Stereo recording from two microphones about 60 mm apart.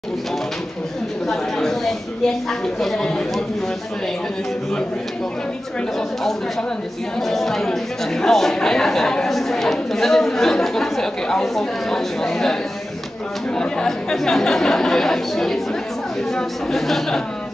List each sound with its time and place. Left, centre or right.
1.2 s a sound: centre
7.2 s a woman's voice: centre
13.6 s a woman's voice: centre